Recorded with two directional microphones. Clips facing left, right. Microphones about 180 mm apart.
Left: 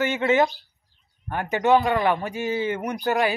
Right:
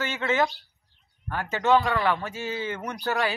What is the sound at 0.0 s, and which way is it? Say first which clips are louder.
Speech: left 5 dB; 20° left (ahead or behind).